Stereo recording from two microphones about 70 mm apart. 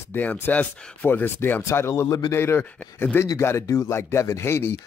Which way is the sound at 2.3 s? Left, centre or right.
Left.